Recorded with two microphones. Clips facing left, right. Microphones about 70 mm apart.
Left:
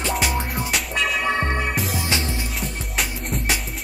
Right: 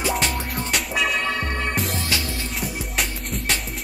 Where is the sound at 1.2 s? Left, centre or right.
Left.